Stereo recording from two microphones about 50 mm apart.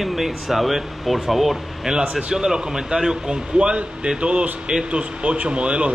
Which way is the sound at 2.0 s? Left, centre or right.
Centre.